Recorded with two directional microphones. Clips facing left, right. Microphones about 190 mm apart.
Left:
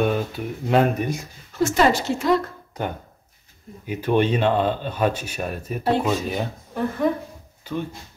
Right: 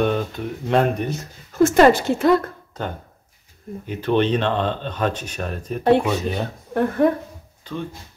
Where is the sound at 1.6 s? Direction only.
55° right (ahead or behind).